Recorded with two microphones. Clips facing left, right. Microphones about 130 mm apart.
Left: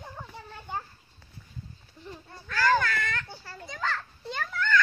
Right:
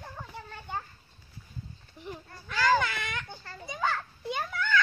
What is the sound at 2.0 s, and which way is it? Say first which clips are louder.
Babbling: right 2 dB; 15° right (ahead or behind).